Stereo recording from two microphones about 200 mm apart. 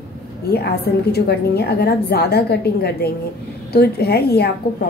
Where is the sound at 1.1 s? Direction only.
55° left (ahead or behind).